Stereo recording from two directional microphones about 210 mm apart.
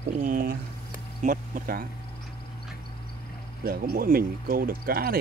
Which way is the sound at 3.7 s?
45° right (ahead or behind).